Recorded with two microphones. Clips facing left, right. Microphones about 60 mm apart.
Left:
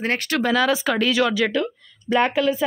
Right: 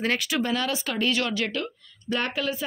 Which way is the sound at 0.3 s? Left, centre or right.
Left.